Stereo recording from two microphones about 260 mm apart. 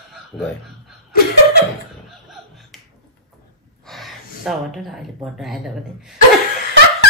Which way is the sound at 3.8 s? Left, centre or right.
Centre.